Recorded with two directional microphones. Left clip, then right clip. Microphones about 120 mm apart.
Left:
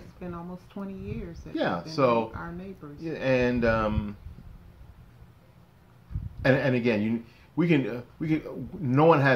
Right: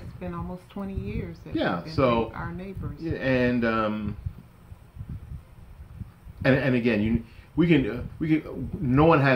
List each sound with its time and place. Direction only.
0.2 s speech: 30° right (ahead or behind)
1.5 s speech: 20° left (ahead or behind)
2.3 s speech: 30° right (ahead or behind)
3.0 s speech: 25° left (ahead or behind)
6.4 s speech: 20° left (ahead or behind)